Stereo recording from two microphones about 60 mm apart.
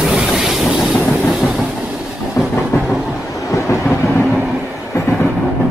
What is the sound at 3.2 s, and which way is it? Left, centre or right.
Vehicle, left.